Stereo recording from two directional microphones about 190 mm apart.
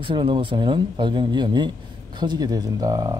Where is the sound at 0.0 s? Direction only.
25° right (ahead or behind).